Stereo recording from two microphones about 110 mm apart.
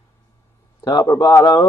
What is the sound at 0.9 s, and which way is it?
Speech, 35° left (ahead or behind).